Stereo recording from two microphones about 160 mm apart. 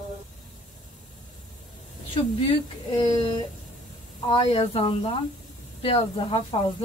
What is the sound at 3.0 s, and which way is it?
Speech, 35° left (ahead or behind).